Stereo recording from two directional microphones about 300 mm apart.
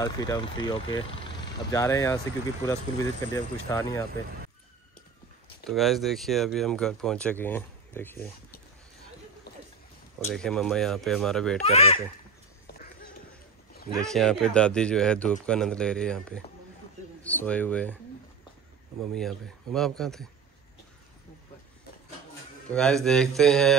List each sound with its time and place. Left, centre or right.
0.0 s speech: centre
5.7 s speech: centre
10.2 s speech: centre
11.6 s speech: centre
13.9 s speech: centre
19.1 s speech: centre
22.7 s speech: centre